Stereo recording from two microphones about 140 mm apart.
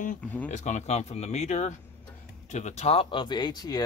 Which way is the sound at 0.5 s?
55° left (ahead or behind).